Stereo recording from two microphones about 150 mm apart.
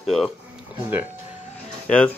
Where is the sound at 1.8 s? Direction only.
10° left (ahead or behind).